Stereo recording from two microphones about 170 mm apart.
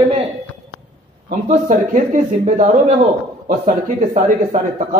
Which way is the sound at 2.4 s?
45° right (ahead or behind).